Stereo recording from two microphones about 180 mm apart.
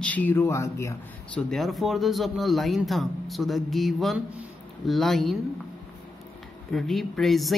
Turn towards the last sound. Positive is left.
turn(degrees=0)  # may be behind; listen again after turning